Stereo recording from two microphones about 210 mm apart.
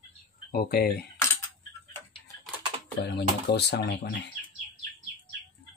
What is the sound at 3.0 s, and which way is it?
Speech, 50° left (ahead or behind).